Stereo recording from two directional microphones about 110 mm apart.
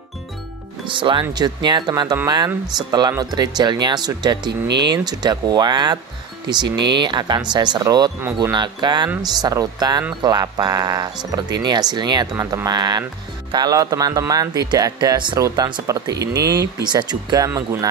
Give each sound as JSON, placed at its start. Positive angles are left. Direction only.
{"t": 0.8, "sound": "speech", "side_deg": -50}
{"t": 15.3, "sound": "speech", "side_deg": -30}
{"t": 17.6, "sound": "music", "side_deg": -30}